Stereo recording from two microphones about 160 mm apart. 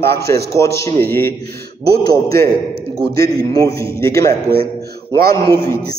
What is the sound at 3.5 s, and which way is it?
Speech, 20° left (ahead or behind).